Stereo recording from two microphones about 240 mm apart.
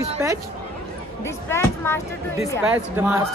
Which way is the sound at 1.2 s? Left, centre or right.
Centre.